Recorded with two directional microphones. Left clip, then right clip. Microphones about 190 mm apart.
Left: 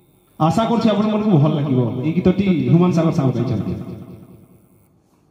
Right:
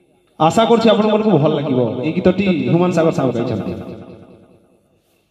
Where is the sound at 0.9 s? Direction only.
15° right (ahead or behind).